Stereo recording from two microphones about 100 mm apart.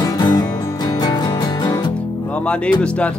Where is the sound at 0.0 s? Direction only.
45° left (ahead or behind).